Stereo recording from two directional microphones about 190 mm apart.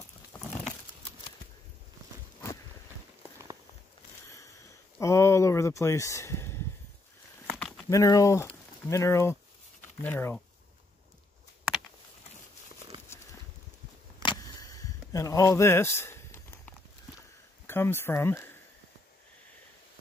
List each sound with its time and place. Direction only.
4.9 s speech: 15° left (ahead or behind)
7.5 s a sound: 5° left (ahead or behind)
7.9 s speech: 15° left (ahead or behind)
13.1 s horse: 15° left (ahead or behind)
14.2 s a sound: 20° left (ahead or behind)
17.6 s speech: 10° left (ahead or behind)